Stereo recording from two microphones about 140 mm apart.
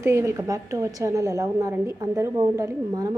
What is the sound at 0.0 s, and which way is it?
A woman's voice, 20° right (ahead or behind).